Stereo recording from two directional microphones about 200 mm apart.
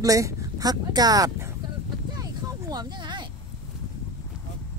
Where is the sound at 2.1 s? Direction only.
20° right (ahead or behind).